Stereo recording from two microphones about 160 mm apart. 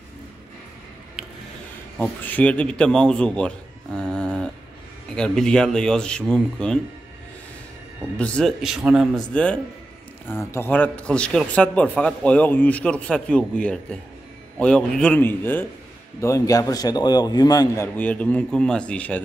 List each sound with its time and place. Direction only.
2.0 s a man's voice: 10° left (ahead or behind)
8.2 s speech: 5° left (ahead or behind)
9.3 s a man's voice: 5° left (ahead or behind); by 17.8 s 25° left (ahead or behind)
17.9 s a man's voice: 10° left (ahead or behind)